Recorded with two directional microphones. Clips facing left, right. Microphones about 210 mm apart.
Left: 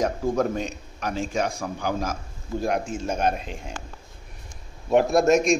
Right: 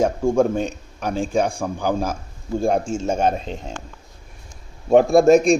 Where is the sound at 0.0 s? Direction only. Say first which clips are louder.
Right 6 dB; 25° right (ahead or behind).